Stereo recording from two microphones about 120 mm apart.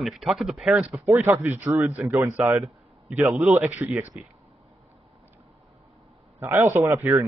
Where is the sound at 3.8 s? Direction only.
15° right (ahead or behind).